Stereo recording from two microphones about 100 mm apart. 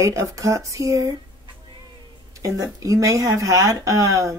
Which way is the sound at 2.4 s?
35° right (ahead or behind).